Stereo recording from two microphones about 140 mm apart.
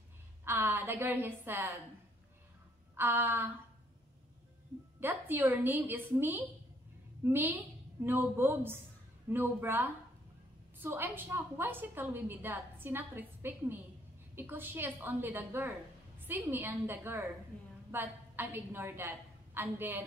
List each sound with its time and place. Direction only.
0.5 s a woman's voice: 15° right (ahead or behind)
3.0 s a woman's voice: 15° right (ahead or behind)
5.0 s a woman's voice: 15° right (ahead or behind)